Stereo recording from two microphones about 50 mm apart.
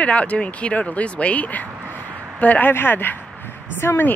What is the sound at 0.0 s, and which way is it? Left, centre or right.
Speech, left.